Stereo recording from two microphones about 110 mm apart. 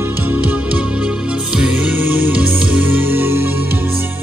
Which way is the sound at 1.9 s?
15° right (ahead or behind).